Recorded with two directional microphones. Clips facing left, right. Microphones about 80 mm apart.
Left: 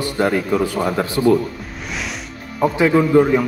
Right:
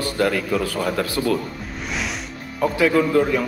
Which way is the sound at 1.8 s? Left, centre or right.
Centre.